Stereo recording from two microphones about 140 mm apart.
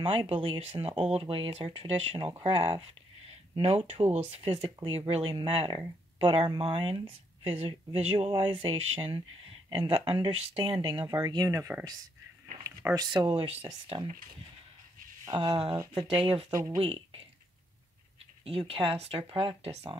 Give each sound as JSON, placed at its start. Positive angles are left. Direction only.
{"t": 0.0, "sound": "speech", "side_deg": -40}
{"t": 3.5, "sound": "speech", "side_deg": -45}
{"t": 15.2, "sound": "speech", "side_deg": -30}
{"t": 15.7, "sound": "speech", "side_deg": -25}
{"t": 18.7, "sound": "speech", "side_deg": -40}